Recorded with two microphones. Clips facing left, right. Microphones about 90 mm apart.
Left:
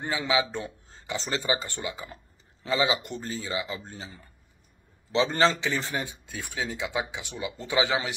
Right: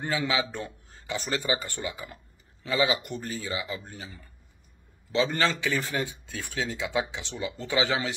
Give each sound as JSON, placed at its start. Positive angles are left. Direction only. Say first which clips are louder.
{"t": 0.0, "sound": "speech", "louder": "left 1 dB", "side_deg": 20}